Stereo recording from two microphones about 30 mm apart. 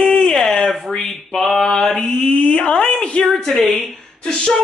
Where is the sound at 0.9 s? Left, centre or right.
Centre.